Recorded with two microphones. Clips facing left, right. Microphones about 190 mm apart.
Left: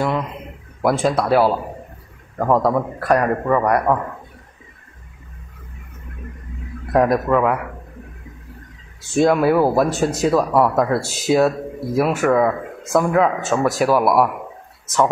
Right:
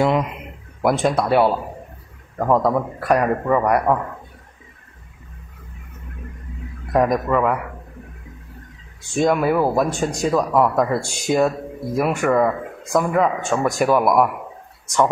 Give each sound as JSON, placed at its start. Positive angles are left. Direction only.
{"t": 0.0, "sound": "a man's voice", "side_deg": -20}
{"t": 0.8, "sound": "a man's voice", "side_deg": 0}
{"t": 6.9, "sound": "speech", "side_deg": 0}
{"t": 9.2, "sound": "speech", "side_deg": 5}